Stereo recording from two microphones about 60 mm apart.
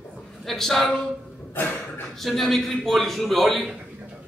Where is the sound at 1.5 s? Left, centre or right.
Left.